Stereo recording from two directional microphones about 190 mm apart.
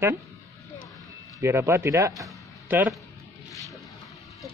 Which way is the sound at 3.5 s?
15° left (ahead or behind).